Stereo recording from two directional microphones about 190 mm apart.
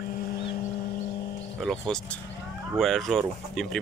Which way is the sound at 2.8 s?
Centre (ahead or behind).